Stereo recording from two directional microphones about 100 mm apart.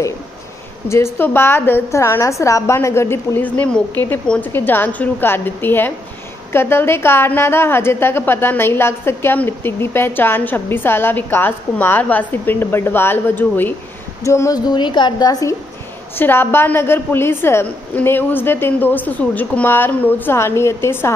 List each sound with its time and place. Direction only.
0.8 s a woman's voice: 30° left (ahead or behind)
14.2 s a sound: 30° left (ahead or behind)
14.7 s a woman's voice: 50° left (ahead or behind)
16.2 s a woman's voice: 20° left (ahead or behind)